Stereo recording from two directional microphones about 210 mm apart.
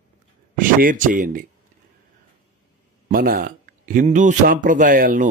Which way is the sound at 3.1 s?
45° right (ahead or behind).